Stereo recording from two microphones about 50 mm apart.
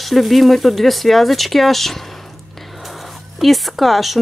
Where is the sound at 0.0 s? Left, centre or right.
Centre.